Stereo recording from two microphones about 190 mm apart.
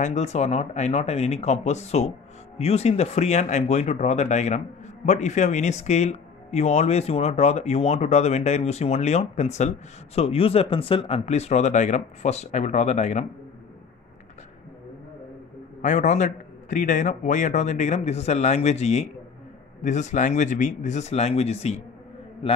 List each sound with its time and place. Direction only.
0.0 s speech: 35° left (ahead or behind)
15.8 s speech: 40° left (ahead or behind)